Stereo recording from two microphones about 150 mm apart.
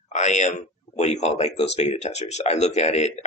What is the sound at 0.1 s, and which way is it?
A man's voice, 50° left (ahead or behind).